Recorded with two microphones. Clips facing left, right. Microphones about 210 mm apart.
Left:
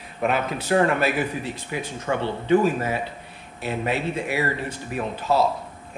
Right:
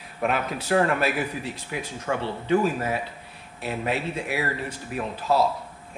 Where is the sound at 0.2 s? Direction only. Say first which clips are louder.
Left 2 dB; centre (ahead or behind).